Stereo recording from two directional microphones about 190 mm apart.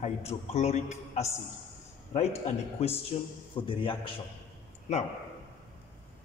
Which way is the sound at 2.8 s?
30° left (ahead or behind).